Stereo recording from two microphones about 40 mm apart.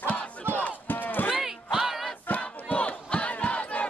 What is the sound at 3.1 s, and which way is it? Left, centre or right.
Battle cry, left.